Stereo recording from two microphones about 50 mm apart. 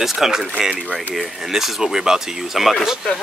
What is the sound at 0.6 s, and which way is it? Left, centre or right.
Speech, right.